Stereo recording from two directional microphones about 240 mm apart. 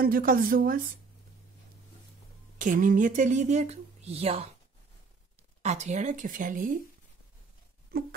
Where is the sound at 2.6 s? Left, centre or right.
Right.